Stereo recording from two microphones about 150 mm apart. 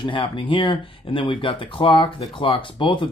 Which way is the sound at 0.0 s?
35° left (ahead or behind).